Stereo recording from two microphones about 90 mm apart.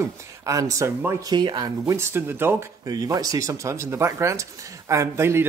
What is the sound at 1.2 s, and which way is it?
Speech, 55° right (ahead or behind).